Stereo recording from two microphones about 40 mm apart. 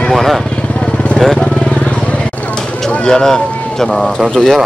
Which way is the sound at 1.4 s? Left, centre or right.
Left.